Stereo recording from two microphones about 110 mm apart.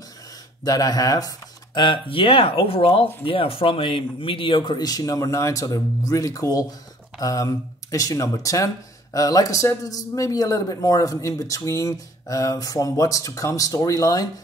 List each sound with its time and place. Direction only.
0.7 s speech: 35° left (ahead or behind)